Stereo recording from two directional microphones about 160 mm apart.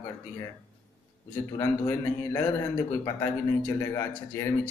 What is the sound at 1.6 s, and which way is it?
Speech, 15° left (ahead or behind).